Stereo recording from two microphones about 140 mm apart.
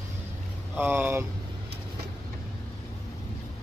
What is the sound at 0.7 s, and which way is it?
Speech, 15° right (ahead or behind).